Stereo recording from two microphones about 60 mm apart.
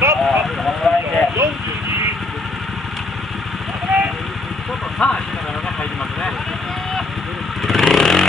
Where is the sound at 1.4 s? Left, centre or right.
Right.